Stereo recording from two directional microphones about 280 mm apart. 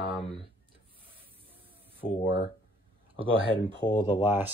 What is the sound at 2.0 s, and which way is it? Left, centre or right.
Speech, left.